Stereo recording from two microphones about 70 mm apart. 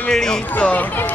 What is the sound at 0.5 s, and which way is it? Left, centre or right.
Speech, left.